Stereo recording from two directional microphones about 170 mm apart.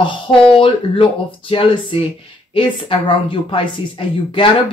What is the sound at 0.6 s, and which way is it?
A woman's voice, 30° left (ahead or behind).